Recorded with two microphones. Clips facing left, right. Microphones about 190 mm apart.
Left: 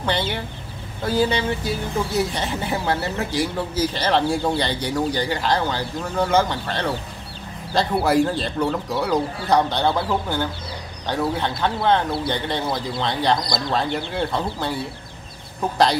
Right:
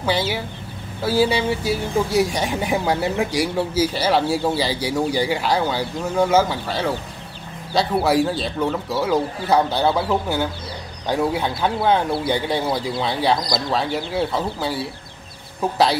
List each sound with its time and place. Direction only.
0.0 s speech: 5° right (ahead or behind)